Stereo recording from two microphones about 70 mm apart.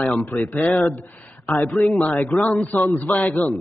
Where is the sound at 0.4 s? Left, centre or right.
Left.